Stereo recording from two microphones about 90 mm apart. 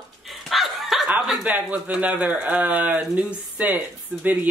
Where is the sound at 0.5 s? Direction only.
Centre (ahead or behind).